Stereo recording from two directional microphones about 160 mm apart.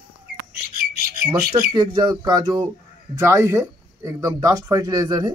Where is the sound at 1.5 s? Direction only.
25° right (ahead or behind).